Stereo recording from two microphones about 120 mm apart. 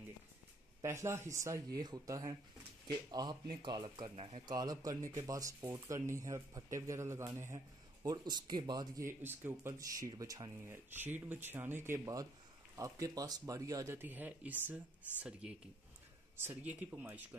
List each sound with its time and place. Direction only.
0.8 s speech: 25° right (ahead or behind)
8.0 s speech: 35° right (ahead or behind)
9.2 s speech: 15° right (ahead or behind)